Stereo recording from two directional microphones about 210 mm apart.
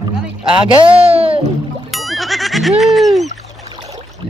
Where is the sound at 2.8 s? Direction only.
Centre (ahead or behind).